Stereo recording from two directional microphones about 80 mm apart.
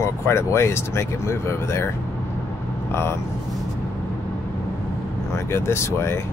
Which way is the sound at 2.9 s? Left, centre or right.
Left.